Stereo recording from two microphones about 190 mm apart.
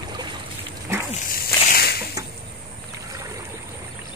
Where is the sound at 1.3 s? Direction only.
55° left (ahead or behind).